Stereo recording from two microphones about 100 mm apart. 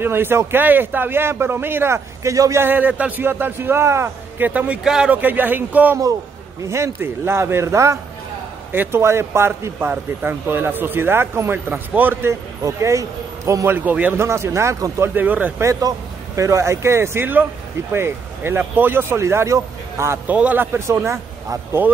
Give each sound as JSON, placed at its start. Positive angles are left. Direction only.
{"t": 0.0, "sound": "a man's voice", "side_deg": -25}
{"t": 2.6, "sound": "a man's voice", "side_deg": -20}
{"t": 13.7, "sound": "a man's voice", "side_deg": -15}
{"t": 15.1, "sound": "speech", "side_deg": -15}
{"t": 15.6, "sound": "a man's voice", "side_deg": -30}
{"t": 20.2, "sound": "a man's voice", "side_deg": -15}